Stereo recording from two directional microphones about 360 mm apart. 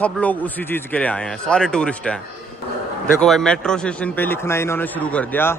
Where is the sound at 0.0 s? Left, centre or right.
Centre.